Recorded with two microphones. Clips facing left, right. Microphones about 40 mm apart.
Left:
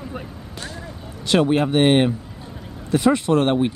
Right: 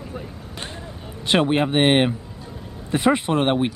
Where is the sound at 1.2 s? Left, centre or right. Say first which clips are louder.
Left 1 dB; right.